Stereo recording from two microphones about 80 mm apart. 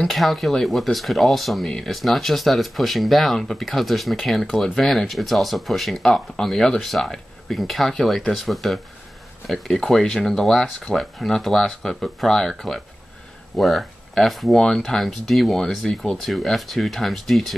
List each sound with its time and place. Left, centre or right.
0.1 s speech: centre